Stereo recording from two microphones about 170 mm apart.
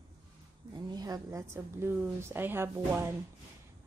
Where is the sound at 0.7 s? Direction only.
25° right (ahead or behind).